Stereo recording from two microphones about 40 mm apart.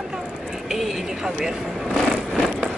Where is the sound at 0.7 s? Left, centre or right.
Centre.